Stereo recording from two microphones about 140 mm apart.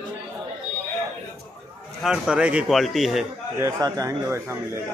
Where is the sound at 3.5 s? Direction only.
25° right (ahead or behind).